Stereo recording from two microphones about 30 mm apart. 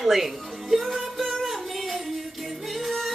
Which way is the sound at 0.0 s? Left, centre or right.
Centre.